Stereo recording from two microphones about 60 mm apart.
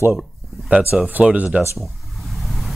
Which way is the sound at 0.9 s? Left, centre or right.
Centre.